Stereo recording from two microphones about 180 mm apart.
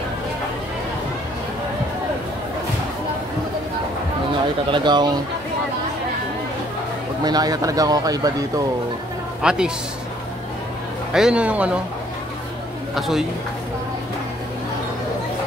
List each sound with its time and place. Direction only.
4.6 s speech: 25° right (ahead or behind)
7.2 s speech: 20° right (ahead or behind)
9.4 s a man's voice: 5° right (ahead or behind)
11.1 s a man's voice: 5° right (ahead or behind)
12.9 s a man's voice: centre (ahead or behind)